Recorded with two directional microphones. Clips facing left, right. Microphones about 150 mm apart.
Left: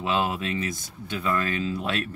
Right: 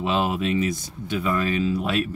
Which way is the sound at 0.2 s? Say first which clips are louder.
Right 4 dB; 15° right (ahead or behind).